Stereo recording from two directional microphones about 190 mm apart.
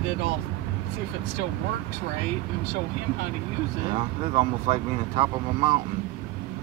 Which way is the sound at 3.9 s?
30° right (ahead or behind).